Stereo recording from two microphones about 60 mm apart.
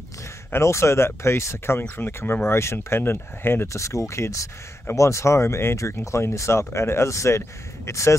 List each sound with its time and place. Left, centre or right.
0.5 s speech: left
1.8 s speech: left
3.6 s speech: left